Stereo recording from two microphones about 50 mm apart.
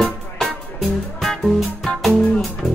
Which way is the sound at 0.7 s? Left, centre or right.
Centre.